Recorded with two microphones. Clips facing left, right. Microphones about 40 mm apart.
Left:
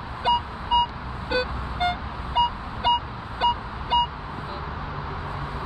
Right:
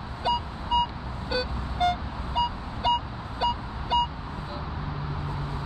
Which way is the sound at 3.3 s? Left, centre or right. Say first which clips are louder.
Left 4 dB; left.